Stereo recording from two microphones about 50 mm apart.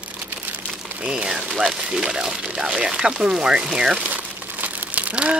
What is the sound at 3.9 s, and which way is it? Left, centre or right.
Crumpling, right.